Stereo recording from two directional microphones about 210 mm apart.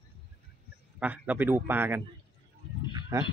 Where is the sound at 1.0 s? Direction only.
10° right (ahead or behind).